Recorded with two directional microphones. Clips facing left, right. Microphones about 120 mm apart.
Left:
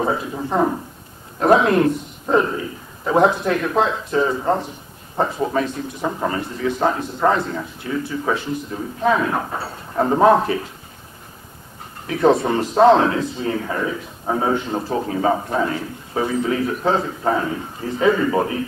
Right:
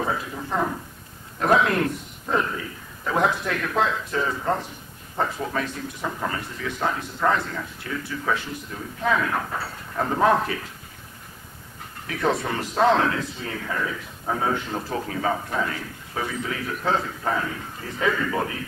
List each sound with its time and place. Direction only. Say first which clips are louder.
0.0 s a man's voice: left 6 dB; 25° left (ahead or behind)
12.1 s a man's voice: left 8 dB; 30° left (ahead or behind)